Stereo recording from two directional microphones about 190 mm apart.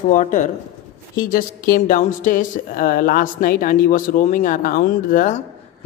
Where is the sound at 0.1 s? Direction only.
40° left (ahead or behind).